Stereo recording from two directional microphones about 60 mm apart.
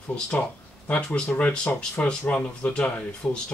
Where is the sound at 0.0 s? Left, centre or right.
Centre.